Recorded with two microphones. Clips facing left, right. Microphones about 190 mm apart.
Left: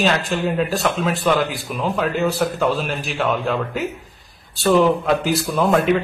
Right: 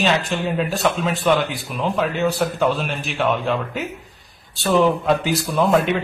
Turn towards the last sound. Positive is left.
turn(degrees=0)  # may be behind; listen again after turning